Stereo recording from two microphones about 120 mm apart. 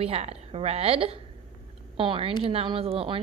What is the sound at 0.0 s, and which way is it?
A woman's voice, 60° right (ahead or behind).